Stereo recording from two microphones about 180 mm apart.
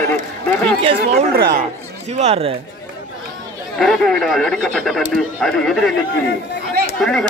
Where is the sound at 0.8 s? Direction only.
35° right (ahead or behind).